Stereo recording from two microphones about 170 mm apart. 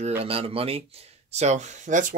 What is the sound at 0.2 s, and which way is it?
Speech, 35° right (ahead or behind).